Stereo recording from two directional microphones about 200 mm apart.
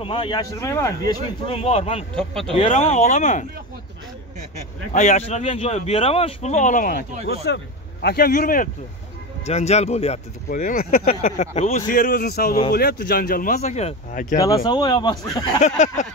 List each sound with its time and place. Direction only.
0.0 s speech: 25° left (ahead or behind)
1.4 s speech: 30° left (ahead or behind)
2.1 s speech: 5° left (ahead or behind)
2.5 s speech: 30° left (ahead or behind)
4.9 s speech: 35° left (ahead or behind)
9.4 s speech: 35° left (ahead or behind)
10.6 s speech: 45° left (ahead or behind)
14.3 s speech: 20° left (ahead or behind)
15.6 s speech: 35° left (ahead or behind)